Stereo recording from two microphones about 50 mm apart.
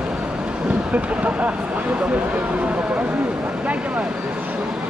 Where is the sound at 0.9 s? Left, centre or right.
Right.